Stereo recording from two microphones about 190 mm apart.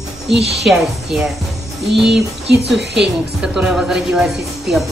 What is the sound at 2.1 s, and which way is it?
Speech, 65° right (ahead or behind).